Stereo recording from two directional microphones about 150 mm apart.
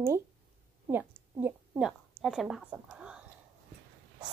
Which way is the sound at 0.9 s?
15° right (ahead or behind).